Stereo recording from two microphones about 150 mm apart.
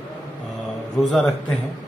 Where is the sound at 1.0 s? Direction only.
Centre (ahead or behind).